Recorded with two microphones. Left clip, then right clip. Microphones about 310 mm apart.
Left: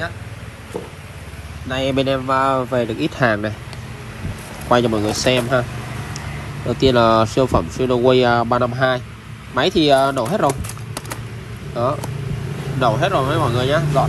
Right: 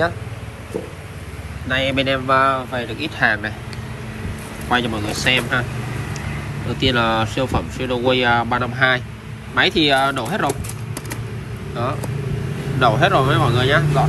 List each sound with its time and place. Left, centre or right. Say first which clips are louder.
1.7 s speech: even; centre
2.8 s speech: left 1 dB; left
4.7 s speech: left 3 dB; left
6.8 s speech: left 4 dB; left
11.7 s speech: left 4 dB; centre